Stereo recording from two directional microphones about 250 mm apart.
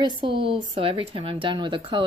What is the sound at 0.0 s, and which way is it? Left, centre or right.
Speech, centre.